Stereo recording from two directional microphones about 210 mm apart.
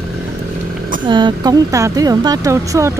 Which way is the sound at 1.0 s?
20° right (ahead or behind).